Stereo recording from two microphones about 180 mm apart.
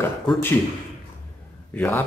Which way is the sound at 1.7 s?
10° left (ahead or behind).